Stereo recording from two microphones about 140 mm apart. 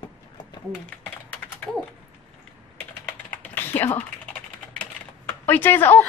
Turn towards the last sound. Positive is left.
turn(degrees=15)  # may be behind; listen again after turning